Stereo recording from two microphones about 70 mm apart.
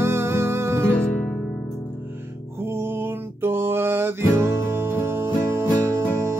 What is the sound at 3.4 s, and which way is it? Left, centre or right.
Music, right.